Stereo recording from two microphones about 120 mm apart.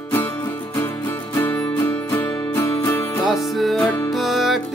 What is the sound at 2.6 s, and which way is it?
Music, 30° left (ahead or behind).